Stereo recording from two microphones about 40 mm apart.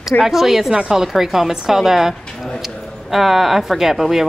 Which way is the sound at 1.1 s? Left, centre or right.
Centre.